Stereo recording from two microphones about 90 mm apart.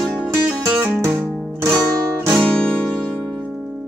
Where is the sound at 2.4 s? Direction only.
10° left (ahead or behind).